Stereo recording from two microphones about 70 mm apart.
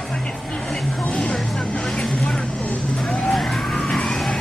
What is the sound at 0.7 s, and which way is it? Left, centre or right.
Vehicle, centre.